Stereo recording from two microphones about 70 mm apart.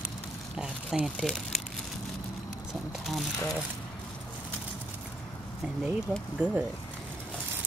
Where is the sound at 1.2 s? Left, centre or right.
Centre.